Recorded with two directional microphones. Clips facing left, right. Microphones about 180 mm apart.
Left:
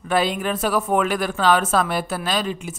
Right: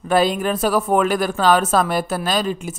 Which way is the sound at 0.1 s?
40° right (ahead or behind).